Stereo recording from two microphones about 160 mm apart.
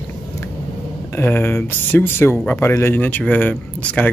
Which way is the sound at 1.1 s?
15° left (ahead or behind).